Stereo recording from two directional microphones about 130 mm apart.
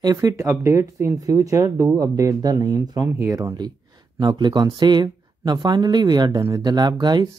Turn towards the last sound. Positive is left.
turn(degrees=-35)  # may be behind; listen again after turning